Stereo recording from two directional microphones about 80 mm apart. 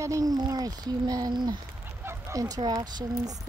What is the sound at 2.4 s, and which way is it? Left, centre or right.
Speech, right.